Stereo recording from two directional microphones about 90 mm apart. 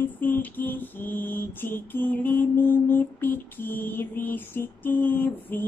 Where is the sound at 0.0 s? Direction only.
20° left (ahead or behind).